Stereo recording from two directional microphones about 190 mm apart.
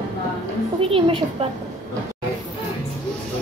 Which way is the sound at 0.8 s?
30° right (ahead or behind).